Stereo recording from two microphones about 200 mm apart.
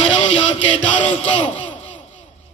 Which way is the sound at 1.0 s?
35° left (ahead or behind).